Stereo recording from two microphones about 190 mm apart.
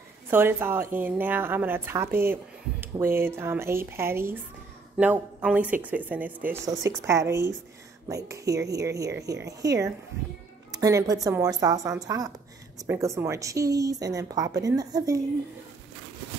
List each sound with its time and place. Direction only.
0.3 s speech: 10° right (ahead or behind)